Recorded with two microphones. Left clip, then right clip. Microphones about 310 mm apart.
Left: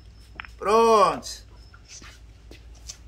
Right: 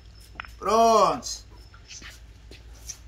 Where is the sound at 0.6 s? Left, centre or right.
Centre.